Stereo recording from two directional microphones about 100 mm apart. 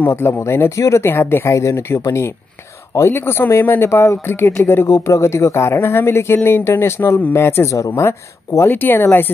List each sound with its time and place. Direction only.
0.0 s speech: 25° left (ahead or behind)